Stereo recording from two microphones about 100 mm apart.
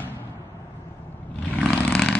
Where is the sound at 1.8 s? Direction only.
15° left (ahead or behind).